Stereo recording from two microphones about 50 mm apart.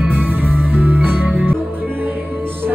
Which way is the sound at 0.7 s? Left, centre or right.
Right.